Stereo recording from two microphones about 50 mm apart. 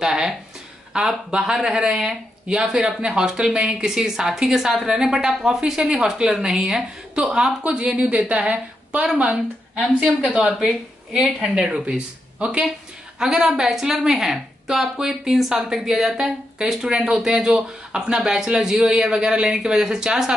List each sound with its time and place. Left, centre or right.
0.0 s a sound: centre
0.9 s a woman's voice: centre
10.4 s a woman's voice: centre